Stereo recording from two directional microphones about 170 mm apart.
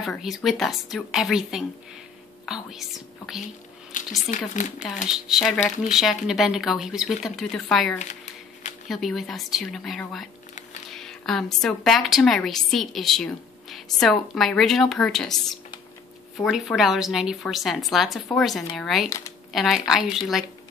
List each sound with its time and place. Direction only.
0.0 s a woman's voice: centre (ahead or behind)
3.9 s speech: 50° left (ahead or behind)
5.1 s a woman's voice: centre (ahead or behind)
19.0 s speech: 20° left (ahead or behind)
19.5 s a woman's voice: centre (ahead or behind)